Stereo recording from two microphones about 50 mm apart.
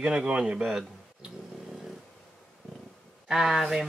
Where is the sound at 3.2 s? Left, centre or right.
Centre.